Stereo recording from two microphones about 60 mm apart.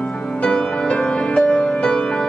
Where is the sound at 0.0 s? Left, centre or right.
Centre.